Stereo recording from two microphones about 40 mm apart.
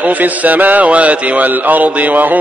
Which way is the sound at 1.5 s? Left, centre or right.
Right.